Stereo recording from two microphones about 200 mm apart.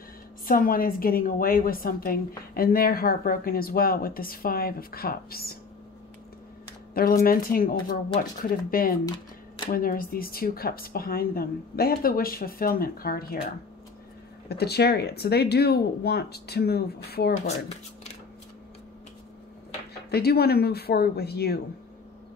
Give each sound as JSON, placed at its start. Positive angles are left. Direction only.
{"t": 0.5, "sound": "a woman's voice", "side_deg": 45}
{"t": 6.9, "sound": "a woman's voice", "side_deg": 50}
{"t": 14.5, "sound": "a woman's voice", "side_deg": 55}
{"t": 17.5, "sound": "speech", "side_deg": 35}
{"t": 19.9, "sound": "a woman's voice", "side_deg": 50}